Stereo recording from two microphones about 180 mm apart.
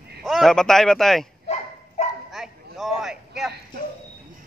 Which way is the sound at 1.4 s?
40° left (ahead or behind).